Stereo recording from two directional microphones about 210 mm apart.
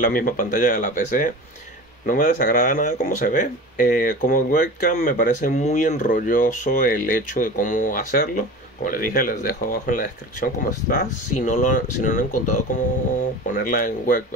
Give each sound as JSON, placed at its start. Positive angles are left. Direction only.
{"t": 0.0, "sound": "speech", "side_deg": 40}